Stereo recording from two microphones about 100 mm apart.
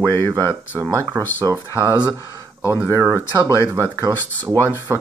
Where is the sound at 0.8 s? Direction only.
30° right (ahead or behind).